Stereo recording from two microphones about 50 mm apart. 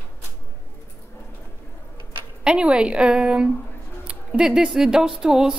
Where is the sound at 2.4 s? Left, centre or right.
Centre.